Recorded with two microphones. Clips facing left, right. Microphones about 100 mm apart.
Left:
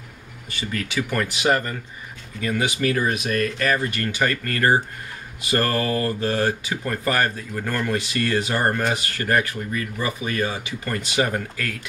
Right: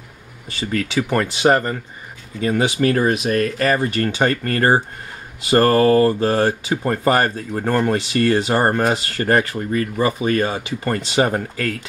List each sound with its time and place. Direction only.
0.5 s speech: 30° right (ahead or behind)